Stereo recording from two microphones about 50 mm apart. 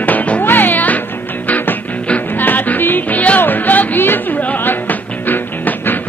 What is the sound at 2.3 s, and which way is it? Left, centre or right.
Music, left.